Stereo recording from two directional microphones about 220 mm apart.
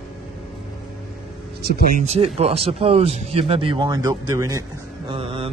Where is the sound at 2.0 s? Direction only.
25° right (ahead or behind).